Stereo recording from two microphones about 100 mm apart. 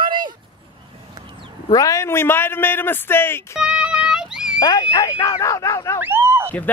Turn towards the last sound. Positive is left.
turn(degrees=-25)  # may be behind; listen again after turning